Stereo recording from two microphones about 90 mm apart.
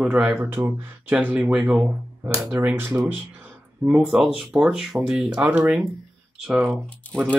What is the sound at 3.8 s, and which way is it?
Speech, 10° right (ahead or behind).